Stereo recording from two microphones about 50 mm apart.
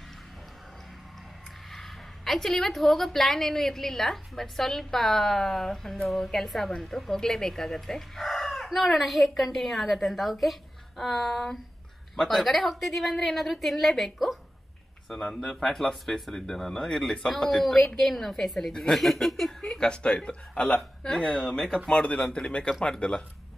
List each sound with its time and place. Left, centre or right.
1.7 s a sound: centre
2.5 s a woman's voice: centre
15.1 s speech: left
15.6 s a woman's voice: centre
19.7 s speech: centre